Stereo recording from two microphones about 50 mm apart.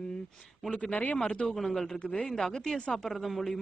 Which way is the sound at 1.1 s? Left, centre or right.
Centre.